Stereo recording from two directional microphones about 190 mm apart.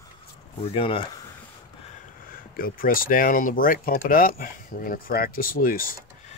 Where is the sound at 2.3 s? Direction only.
50° left (ahead or behind).